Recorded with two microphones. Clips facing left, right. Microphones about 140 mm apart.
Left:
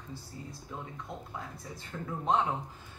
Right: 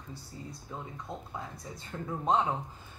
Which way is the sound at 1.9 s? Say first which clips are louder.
Right 1 dB; 20° right (ahead or behind).